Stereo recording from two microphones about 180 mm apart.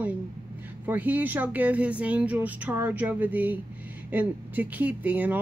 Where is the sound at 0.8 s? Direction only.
10° right (ahead or behind).